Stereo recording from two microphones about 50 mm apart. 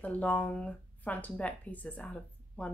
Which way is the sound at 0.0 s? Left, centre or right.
Left.